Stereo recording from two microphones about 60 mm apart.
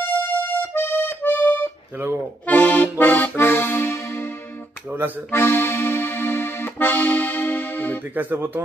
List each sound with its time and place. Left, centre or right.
0.0 s music: left
2.4 s accordion: left
4.8 s accordion: right
5.3 s accordion: left
8.1 s speech: right